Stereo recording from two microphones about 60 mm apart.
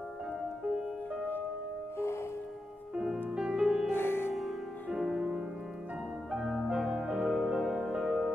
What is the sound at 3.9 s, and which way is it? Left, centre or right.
Music, left.